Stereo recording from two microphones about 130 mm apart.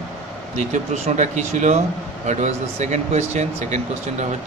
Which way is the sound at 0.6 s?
65° right (ahead or behind).